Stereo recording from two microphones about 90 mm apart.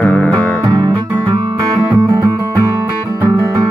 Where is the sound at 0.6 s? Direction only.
55° right (ahead or behind).